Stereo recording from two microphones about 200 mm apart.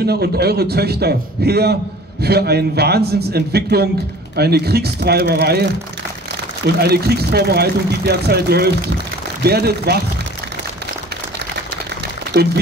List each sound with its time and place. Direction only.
0.0 s speech: 50° right (ahead or behind)